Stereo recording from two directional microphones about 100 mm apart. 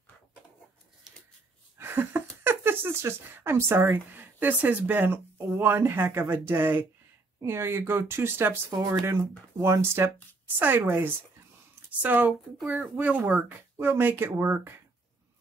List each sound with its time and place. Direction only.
1.8 s speech: 20° right (ahead or behind)
12.5 s speech: 5° right (ahead or behind)
12.9 s speech: 15° right (ahead or behind)